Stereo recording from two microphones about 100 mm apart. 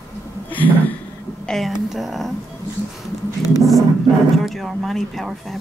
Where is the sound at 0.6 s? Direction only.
15° left (ahead or behind).